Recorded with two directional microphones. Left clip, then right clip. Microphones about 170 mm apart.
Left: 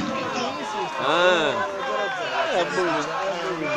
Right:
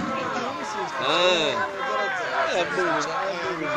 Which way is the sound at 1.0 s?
20° left (ahead or behind).